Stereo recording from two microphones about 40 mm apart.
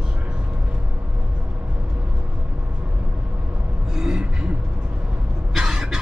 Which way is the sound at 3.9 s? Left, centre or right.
Centre.